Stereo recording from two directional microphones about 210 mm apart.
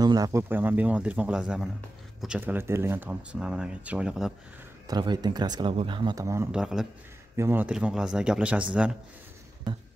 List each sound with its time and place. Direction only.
0.0 s speech: 20° right (ahead or behind)
4.8 s speech: 20° right (ahead or behind)